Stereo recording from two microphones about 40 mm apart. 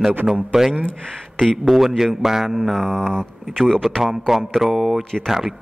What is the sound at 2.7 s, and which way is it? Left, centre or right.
Speech, centre.